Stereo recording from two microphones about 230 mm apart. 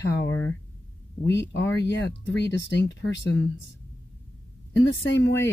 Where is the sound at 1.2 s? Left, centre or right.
Left.